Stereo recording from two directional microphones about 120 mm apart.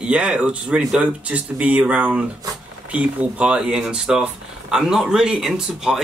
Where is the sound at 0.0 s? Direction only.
10° right (ahead or behind).